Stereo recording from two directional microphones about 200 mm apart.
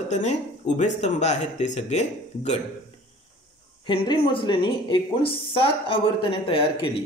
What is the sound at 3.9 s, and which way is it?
A woman's voice, 25° left (ahead or behind).